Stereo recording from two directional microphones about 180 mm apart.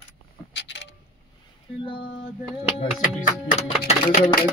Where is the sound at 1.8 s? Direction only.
30° left (ahead or behind).